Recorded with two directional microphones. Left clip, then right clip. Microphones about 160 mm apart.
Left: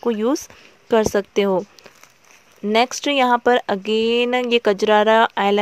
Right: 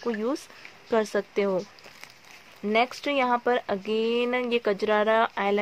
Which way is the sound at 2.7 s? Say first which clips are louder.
Left 7 dB; 50° left (ahead or behind).